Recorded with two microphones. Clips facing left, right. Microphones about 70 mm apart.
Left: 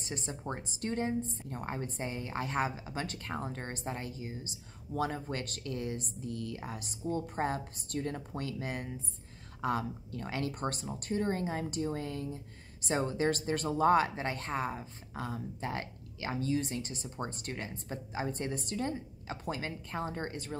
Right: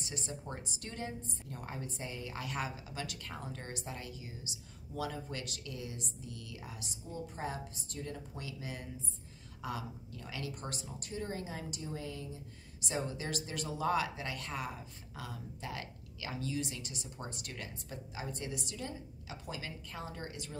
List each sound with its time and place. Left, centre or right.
0.0 s a woman's voice: left